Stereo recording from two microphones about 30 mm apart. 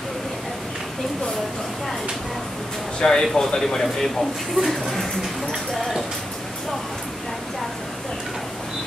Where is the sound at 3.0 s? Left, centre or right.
Left; by 5.8 s centre.